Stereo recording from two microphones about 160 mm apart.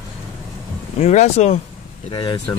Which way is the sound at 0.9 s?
45° left (ahead or behind).